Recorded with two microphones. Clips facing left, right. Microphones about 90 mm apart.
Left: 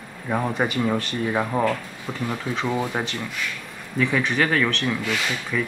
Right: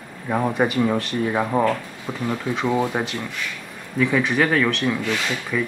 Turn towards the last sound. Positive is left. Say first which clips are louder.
# right 2 dB
turn(degrees=0)  # may be behind; listen again after turning